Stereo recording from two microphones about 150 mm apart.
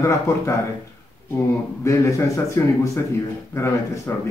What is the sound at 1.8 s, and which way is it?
A man's voice, 20° left (ahead or behind).